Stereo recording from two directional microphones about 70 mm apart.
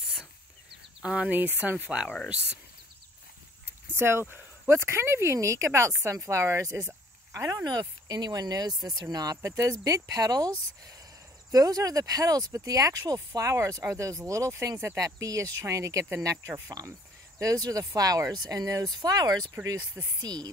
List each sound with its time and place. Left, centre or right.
1.0 s speech: centre
3.6 s speech: right
7.6 s speech: right
9.1 s speech: right
16.8 s speech: right
17.4 s speech: right